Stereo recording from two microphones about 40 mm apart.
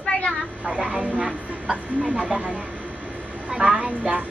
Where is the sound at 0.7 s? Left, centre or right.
Right.